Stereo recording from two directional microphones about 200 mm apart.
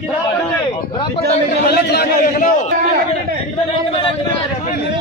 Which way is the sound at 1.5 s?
55° left (ahead or behind).